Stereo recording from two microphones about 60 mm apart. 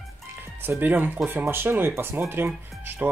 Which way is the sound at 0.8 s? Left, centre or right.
Right.